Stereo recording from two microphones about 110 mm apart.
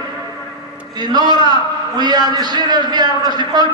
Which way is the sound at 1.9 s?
40° right (ahead or behind).